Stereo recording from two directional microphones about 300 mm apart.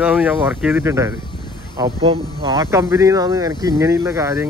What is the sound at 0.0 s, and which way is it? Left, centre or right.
Speech, centre.